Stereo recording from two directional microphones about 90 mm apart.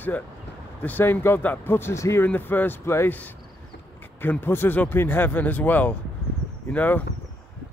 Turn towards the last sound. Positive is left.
turn(degrees=15)  # may be behind; listen again after turning